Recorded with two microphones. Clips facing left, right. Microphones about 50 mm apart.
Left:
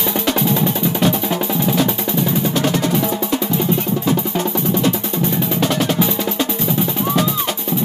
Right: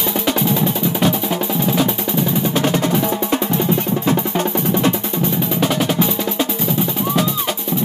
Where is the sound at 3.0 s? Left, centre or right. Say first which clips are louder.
Right 1 dB; right.